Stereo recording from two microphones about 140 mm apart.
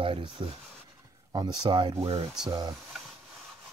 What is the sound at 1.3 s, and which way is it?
Speech, 30° right (ahead or behind).